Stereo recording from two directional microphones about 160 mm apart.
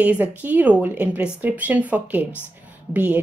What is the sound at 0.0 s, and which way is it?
A woman's voice, 10° right (ahead or behind).